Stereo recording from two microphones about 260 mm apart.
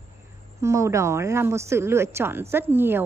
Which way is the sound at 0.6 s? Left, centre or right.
Centre.